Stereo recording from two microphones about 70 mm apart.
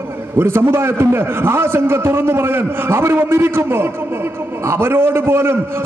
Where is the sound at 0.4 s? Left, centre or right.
Right.